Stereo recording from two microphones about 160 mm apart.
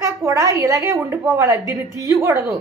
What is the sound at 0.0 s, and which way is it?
A woman's voice, 20° right (ahead or behind).